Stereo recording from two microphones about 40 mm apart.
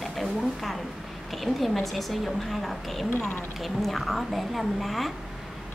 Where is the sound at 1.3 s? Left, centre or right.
Centre.